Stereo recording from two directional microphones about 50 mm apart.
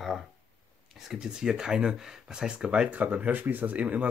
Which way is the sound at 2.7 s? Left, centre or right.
Right.